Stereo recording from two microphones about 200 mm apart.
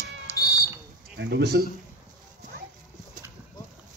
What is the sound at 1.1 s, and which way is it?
Speech, 55° right (ahead or behind).